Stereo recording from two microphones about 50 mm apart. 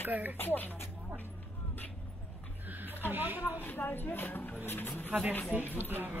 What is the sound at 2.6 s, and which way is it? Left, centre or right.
Chuckle, right.